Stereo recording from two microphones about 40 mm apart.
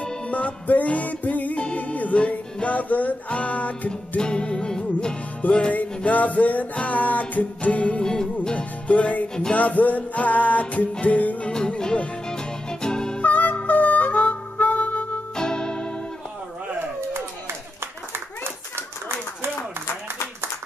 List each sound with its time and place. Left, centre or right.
0.0 s music: left
1.6 s music: left
4.2 s music: left
5.7 s music: left
8.0 s music: left
8.8 s music: left
11.4 s music: left
13.2 s harmonica: left
15.3 s music: centre